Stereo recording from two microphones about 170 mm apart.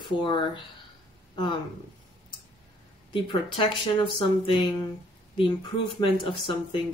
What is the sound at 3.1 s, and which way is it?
Speech, 30° left (ahead or behind).